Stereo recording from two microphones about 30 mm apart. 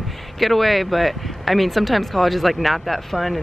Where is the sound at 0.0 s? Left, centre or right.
Centre.